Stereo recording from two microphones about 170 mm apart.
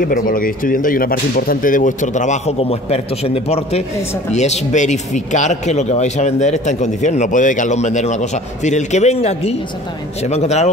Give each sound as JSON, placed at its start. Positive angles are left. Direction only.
{"t": 0.0, "sound": "speech", "side_deg": 55}